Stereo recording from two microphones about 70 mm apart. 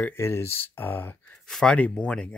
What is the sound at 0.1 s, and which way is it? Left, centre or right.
Speech, left.